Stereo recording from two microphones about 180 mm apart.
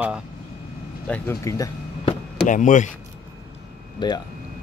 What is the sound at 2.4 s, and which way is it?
Speech, 45° left (ahead or behind).